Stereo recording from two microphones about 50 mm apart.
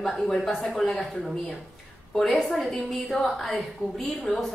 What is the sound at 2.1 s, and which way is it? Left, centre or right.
A woman's voice, centre.